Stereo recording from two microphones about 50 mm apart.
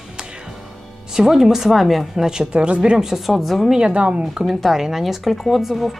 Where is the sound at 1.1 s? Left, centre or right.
Centre.